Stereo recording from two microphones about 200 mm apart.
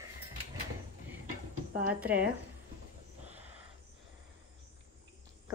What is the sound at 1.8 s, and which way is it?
Speech, 5° right (ahead or behind).